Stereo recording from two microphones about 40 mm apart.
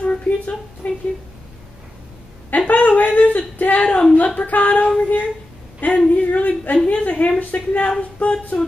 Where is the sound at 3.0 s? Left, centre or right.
Left.